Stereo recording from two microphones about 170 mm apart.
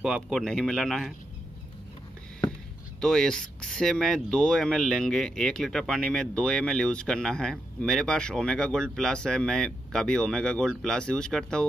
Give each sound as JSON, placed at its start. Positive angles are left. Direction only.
{"t": 0.0, "sound": "speech", "side_deg": 0}
{"t": 3.0, "sound": "speech", "side_deg": 5}